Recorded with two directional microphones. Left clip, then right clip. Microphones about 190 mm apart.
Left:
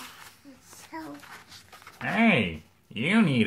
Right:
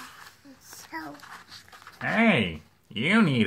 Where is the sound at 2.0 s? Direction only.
30° right (ahead or behind).